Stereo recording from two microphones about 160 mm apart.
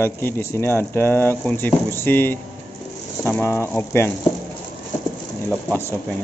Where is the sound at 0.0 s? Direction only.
15° left (ahead or behind).